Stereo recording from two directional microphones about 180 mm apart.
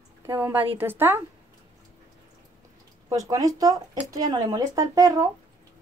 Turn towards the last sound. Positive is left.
turn(degrees=-20)  # may be behind; listen again after turning